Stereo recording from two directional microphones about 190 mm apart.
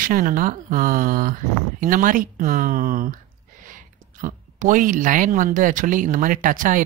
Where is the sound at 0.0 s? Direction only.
45° right (ahead or behind).